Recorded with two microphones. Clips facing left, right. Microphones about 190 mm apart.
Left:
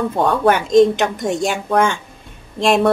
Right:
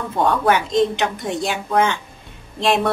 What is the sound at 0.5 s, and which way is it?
A woman's voice, 45° left (ahead or behind).